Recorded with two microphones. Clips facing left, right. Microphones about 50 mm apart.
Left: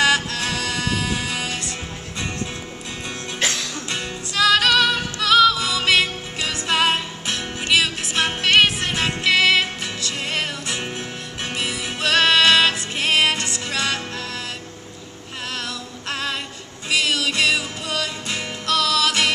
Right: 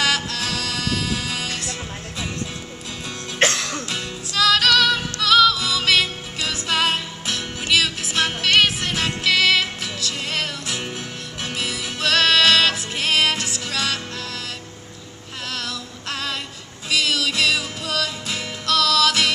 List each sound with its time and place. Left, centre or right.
0.0 s music: centre
3.3 s music: right
3.9 s music: centre
15.5 s music: centre